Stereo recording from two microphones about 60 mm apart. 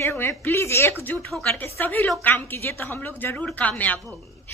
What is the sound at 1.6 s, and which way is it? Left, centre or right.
Speech, left.